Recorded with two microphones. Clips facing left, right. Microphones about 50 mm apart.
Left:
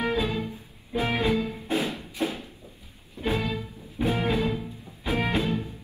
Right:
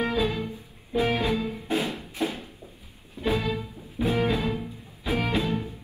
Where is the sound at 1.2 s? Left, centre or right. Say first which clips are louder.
Left 1 dB; left.